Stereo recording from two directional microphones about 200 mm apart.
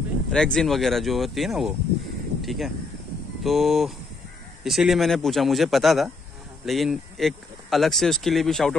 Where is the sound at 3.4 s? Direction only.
Centre (ahead or behind).